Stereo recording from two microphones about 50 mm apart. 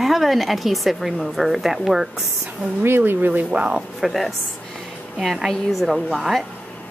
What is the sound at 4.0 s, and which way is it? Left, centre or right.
Speech, centre.